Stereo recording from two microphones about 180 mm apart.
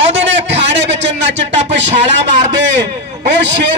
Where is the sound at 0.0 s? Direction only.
80° right.